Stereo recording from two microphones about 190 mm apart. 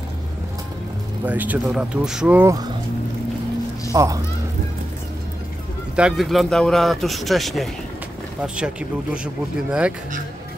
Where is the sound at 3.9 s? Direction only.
15° right (ahead or behind).